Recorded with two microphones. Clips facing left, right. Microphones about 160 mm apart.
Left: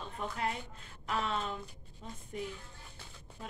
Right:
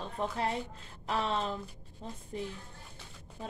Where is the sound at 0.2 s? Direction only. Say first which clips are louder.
Right 4 dB; 30° right (ahead or behind).